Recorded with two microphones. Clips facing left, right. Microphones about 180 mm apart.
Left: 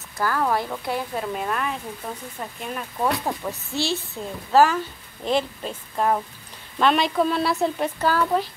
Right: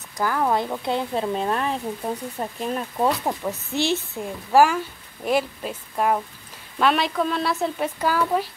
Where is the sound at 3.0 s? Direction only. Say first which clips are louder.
Right 1 dB; 20° right (ahead or behind).